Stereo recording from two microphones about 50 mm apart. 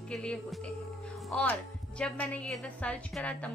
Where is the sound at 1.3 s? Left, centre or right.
Centre.